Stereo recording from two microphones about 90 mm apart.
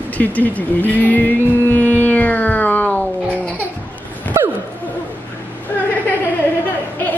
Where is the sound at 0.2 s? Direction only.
20° left (ahead or behind).